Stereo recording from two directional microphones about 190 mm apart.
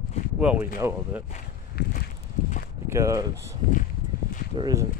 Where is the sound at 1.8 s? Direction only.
55° left (ahead or behind).